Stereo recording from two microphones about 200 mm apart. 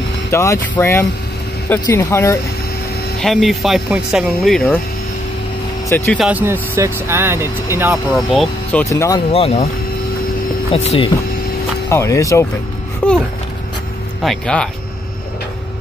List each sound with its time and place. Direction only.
0.3 s speech: 15° left (ahead or behind)
3.2 s speech: centre (ahead or behind)
5.9 s speech: 10° left (ahead or behind)
6.1 s speech: 5° right (ahead or behind)
8.3 s speech: centre (ahead or behind)
8.8 s speech: 15° left (ahead or behind)
9.3 s speech: 30° left (ahead or behind)
10.7 s speech: 30° left (ahead or behind)
11.9 s a child's voice: 15° left (ahead or behind)
14.2 s speech: 5° left (ahead or behind)